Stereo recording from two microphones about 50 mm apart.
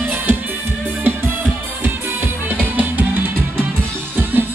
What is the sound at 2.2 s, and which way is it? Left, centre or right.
Music, right.